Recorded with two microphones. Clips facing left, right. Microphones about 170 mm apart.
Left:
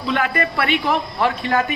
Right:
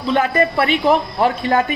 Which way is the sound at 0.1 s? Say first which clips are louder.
Right 5 dB; 35° right (ahead or behind).